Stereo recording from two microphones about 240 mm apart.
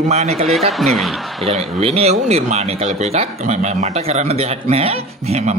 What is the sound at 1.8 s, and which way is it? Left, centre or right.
Speech, right.